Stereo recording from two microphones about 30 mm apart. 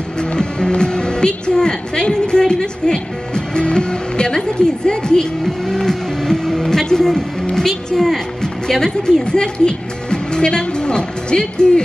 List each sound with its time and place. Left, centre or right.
0.2 s speech: left
5.4 s speech: centre; by 11.8 s left